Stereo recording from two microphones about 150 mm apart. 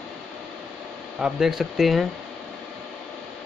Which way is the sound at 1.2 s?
Centre (ahead or behind).